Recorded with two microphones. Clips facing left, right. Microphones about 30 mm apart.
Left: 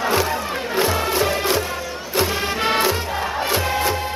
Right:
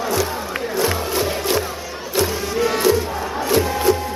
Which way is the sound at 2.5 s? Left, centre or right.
Left.